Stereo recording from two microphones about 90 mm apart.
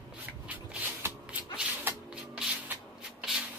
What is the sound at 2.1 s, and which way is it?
Rub, 10° right (ahead or behind).